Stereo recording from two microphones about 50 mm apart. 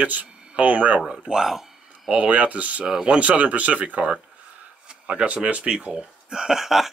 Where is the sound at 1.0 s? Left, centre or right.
Centre.